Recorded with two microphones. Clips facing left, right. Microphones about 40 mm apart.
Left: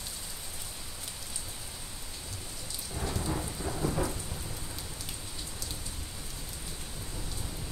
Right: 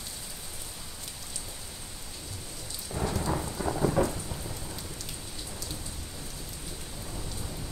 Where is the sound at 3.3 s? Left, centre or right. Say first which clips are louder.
Right 4 dB; centre.